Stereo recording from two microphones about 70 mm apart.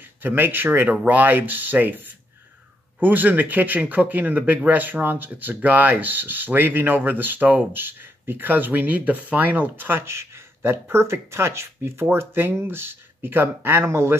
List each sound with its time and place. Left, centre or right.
0.0 s speech: right